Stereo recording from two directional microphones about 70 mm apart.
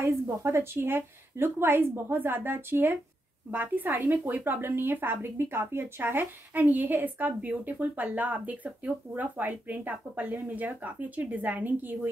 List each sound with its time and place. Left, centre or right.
0.4 s a woman's voice: right